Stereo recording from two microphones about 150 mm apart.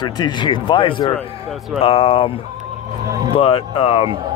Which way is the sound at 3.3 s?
40° left (ahead or behind).